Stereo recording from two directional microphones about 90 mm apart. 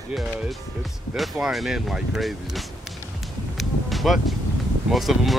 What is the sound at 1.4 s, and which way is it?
Speech, 5° right (ahead or behind).